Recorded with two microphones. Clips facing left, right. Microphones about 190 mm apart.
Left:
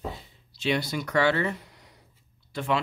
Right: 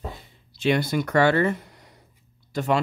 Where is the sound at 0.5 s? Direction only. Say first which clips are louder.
Right 5 dB; 50° right (ahead or behind).